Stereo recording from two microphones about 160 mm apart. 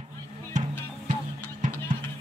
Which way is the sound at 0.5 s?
50° right (ahead or behind).